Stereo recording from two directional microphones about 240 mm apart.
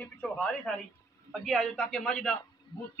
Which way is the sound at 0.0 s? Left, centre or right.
Centre.